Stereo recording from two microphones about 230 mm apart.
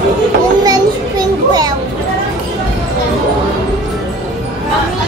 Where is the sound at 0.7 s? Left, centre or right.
Centre.